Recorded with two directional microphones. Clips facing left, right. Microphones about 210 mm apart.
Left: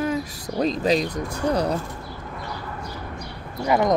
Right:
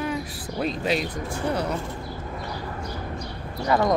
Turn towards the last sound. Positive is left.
turn(degrees=20)  # may be behind; listen again after turning